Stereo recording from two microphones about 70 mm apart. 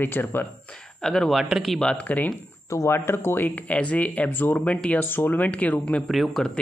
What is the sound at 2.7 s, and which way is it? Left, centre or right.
Speech, left.